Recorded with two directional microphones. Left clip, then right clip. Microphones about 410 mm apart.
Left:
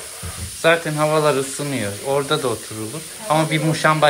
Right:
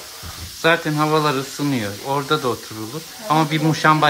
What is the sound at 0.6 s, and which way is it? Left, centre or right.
Speech, centre.